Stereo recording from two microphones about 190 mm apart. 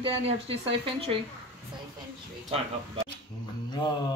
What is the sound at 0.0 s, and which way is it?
Speech, 30° right (ahead or behind).